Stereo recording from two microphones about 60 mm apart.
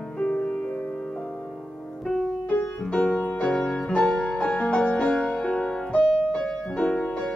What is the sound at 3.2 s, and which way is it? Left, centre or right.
Music, left.